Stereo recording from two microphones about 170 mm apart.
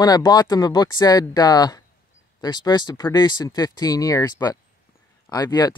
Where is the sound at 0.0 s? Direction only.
25° left (ahead or behind).